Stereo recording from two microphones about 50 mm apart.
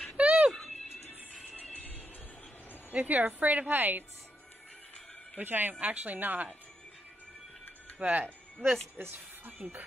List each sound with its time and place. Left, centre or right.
0.2 s music: right
0.5 s music: centre
1.6 s music: left
2.9 s a woman's voice: right
5.4 s a woman's voice: right
8.0 s a woman's voice: right